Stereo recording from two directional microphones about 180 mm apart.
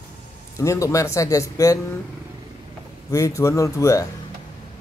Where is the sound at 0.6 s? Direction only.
15° left (ahead or behind).